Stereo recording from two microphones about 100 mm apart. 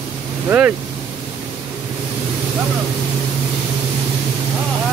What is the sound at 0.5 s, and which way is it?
Speech, 20° right (ahead or behind).